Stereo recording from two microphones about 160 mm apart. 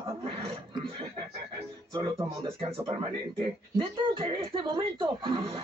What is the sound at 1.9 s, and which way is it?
Speech, 20° right (ahead or behind).